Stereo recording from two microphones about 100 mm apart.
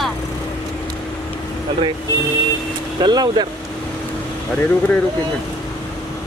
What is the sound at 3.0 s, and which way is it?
Speech, 45° right (ahead or behind).